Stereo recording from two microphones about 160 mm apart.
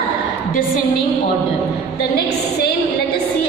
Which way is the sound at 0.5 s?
60° left (ahead or behind).